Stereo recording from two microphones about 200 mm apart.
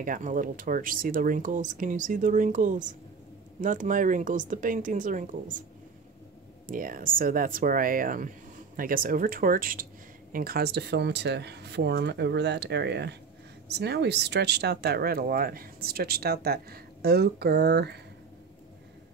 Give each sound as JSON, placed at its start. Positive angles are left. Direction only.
{"t": 0.0, "sound": "speech", "side_deg": -40}
{"t": 6.7, "sound": "speech", "side_deg": -45}